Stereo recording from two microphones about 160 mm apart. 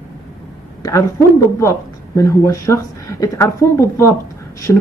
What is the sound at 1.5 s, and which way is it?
Speech, 20° left (ahead or behind).